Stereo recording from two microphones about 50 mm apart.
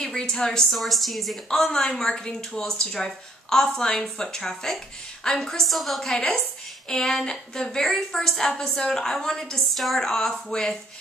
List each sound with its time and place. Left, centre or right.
0.0 s speech: centre
1.5 s speech: centre
5.7 s a woman's voice: centre
6.0 s speech: centre